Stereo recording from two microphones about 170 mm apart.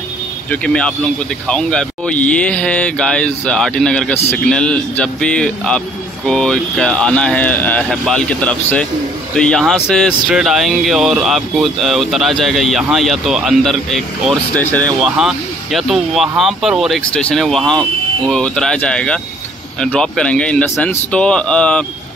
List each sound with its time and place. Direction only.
0.5 s speech: 5° left (ahead or behind)
15.1 s speech: centre (ahead or behind)